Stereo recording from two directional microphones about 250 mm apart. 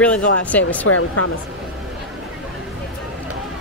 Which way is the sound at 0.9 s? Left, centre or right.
Left.